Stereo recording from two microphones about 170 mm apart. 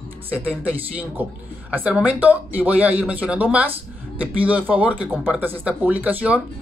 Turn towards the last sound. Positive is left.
turn(degrees=-10)  # may be behind; listen again after turning